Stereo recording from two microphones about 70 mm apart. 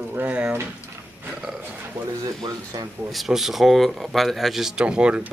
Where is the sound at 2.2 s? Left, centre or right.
Right.